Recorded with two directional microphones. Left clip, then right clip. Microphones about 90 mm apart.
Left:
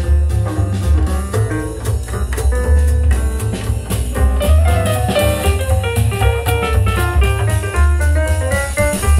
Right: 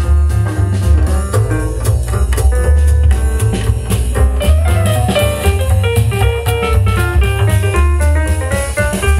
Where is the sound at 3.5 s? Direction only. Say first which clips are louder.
Right 4 dB; 20° right (ahead or behind).